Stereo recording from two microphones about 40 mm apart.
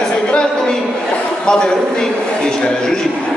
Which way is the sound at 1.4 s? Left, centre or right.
Left.